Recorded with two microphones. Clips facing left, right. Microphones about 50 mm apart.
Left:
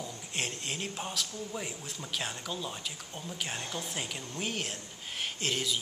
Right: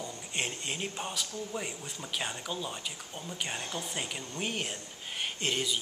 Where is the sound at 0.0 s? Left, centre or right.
Centre.